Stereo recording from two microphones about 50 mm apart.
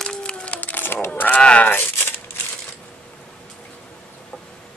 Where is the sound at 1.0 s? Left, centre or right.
Left.